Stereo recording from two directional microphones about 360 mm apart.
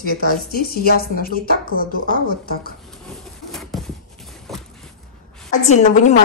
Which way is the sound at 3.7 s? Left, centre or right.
Centre.